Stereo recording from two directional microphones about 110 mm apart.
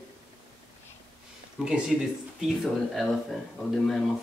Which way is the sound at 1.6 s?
5° right (ahead or behind).